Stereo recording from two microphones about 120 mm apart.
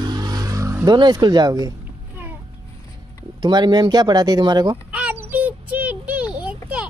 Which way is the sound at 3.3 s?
35° right (ahead or behind).